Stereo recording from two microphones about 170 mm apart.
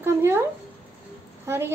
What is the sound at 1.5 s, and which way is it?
Speech, 15° right (ahead or behind).